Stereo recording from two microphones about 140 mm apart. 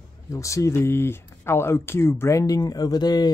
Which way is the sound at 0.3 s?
20° left (ahead or behind).